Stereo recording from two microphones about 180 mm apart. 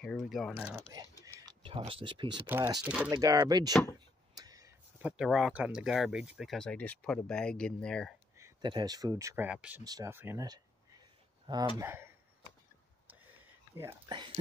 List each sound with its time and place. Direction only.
0.0 s speech: centre (ahead or behind)
1.4 s speech: 25° right (ahead or behind)
2.4 s speech: 10° right (ahead or behind)
3.1 s speech: 20° right (ahead or behind); by 8.1 s 5° left (ahead or behind)
8.4 s speech: 20° right (ahead or behind)
9.5 s speech: 5° right (ahead or behind)
9.8 s a man's voice: 15° right (ahead or behind)
14.0 s speech: 25° right (ahead or behind)